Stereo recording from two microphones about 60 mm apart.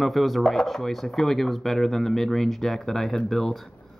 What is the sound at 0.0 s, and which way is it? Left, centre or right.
Speech, centre.